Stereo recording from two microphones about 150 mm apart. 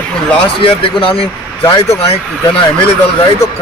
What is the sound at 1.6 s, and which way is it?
Speech, 25° left (ahead or behind).